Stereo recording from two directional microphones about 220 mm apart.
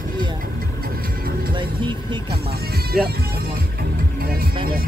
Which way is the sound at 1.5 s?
20° right (ahead or behind).